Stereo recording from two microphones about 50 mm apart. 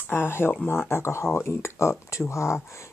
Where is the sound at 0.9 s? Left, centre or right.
Left.